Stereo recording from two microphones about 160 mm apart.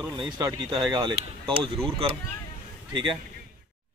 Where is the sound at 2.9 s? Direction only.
30° right (ahead or behind).